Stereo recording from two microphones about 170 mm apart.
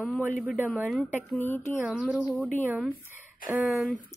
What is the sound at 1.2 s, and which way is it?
Speech, 10° left (ahead or behind).